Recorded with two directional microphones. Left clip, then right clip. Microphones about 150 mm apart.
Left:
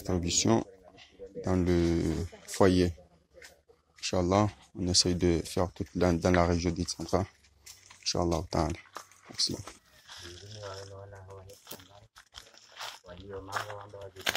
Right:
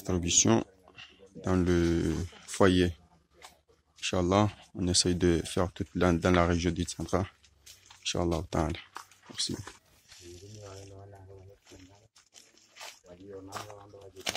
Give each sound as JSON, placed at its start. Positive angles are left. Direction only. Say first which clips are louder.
{"t": 0.0, "sound": "speech", "louder": "right 2 dB", "side_deg": -15}
{"t": 4.0, "sound": "speech", "louder": "even", "side_deg": -15}
{"t": 8.6, "sound": "speech", "louder": "even", "side_deg": 0}
{"t": 13.0, "sound": "a sound", "louder": "left 3 dB", "side_deg": -15}